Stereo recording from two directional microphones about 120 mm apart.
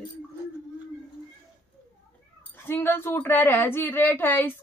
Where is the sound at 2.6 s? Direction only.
20° left (ahead or behind).